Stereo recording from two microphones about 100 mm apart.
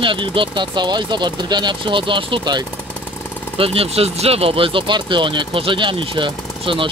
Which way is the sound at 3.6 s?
75° right (ahead or behind).